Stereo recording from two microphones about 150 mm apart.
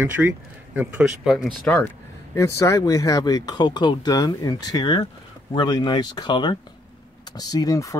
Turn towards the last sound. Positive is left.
turn(degrees=20)  # may be behind; listen again after turning